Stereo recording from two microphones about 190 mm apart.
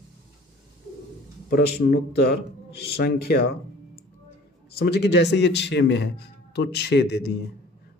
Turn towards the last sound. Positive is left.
turn(degrees=60)  # may be behind; listen again after turning